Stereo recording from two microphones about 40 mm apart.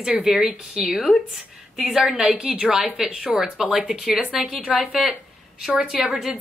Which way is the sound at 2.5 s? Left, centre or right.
Centre.